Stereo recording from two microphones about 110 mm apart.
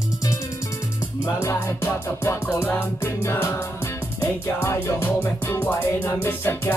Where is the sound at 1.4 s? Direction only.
20° left (ahead or behind).